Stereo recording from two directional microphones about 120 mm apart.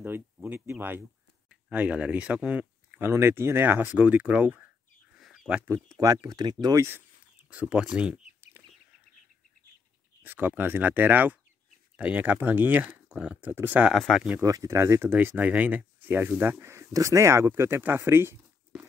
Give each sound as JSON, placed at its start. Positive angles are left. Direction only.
{"t": 0.0, "sound": "speech", "side_deg": -15}
{"t": 5.1, "sound": "a sound", "side_deg": -5}
{"t": 5.9, "sound": "speech", "side_deg": -30}
{"t": 7.4, "sound": "speech", "side_deg": -10}
{"t": 10.2, "sound": "speech", "side_deg": -15}
{"t": 13.9, "sound": "speech", "side_deg": 0}
{"t": 14.4, "sound": "speech", "side_deg": -30}